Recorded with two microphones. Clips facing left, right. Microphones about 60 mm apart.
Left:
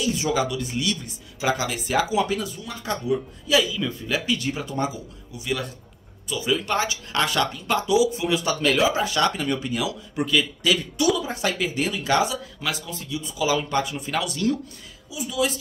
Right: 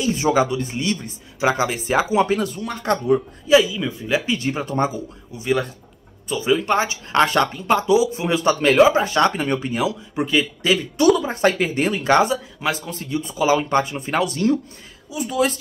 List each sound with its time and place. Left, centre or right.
0.0 s speech: right
3.4 s speech: right
11.1 s speech: right
15.0 s speech: right